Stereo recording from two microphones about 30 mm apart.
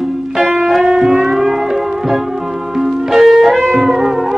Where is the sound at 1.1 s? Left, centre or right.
Centre.